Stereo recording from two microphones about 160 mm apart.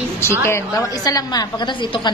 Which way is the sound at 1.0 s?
25° left (ahead or behind).